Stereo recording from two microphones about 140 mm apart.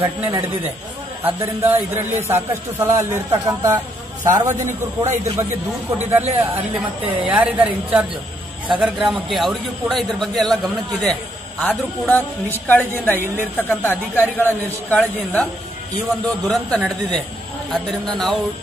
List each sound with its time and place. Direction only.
0.0 s speech: 15° right (ahead or behind)
7.2 s a man's voice: 10° right (ahead or behind)